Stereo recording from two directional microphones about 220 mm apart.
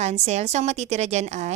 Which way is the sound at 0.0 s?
30° right (ahead or behind).